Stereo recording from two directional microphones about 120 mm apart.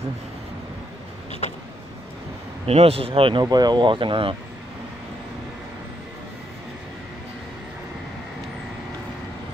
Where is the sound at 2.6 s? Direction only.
55° right (ahead or behind).